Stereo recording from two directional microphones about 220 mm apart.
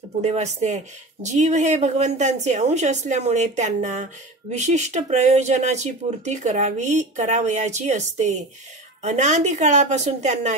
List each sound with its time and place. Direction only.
0.2 s speech: 30° right (ahead or behind)